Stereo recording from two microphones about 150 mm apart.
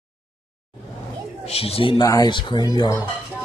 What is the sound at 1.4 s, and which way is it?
Speech, 40° left (ahead or behind).